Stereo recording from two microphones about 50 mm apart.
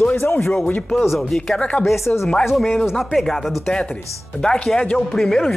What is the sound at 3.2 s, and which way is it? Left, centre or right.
Speech, centre.